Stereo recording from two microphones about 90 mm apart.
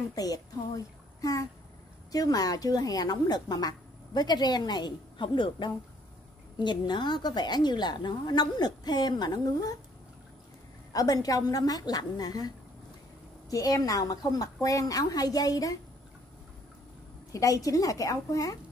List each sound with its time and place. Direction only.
0.1 s a woman's voice: 45° left (ahead or behind); by 5.7 s 65° left (ahead or behind)
6.6 s a woman's voice: 55° left (ahead or behind)
10.9 s a woman's voice: 45° left (ahead or behind)
17.3 s a woman's voice: 40° left (ahead or behind)